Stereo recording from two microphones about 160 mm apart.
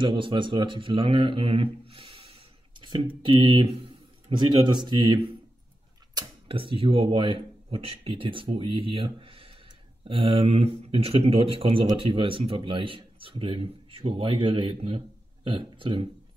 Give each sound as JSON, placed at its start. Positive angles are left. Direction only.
{"t": 0.0, "sound": "speech", "side_deg": -30}